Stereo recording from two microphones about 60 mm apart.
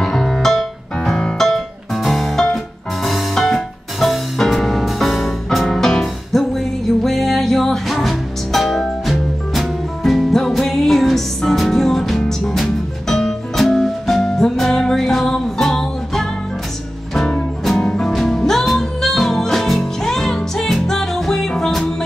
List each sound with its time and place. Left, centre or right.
0.0 s music: centre